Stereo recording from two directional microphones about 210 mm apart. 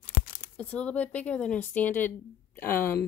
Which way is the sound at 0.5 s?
5° left (ahead or behind).